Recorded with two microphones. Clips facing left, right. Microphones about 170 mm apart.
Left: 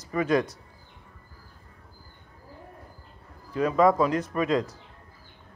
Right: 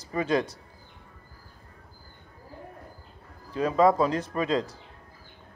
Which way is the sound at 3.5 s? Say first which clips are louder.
Even; 30° right (ahead or behind).